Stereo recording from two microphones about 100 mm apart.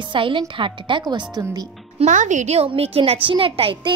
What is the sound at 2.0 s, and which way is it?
A woman's voice, 90° right.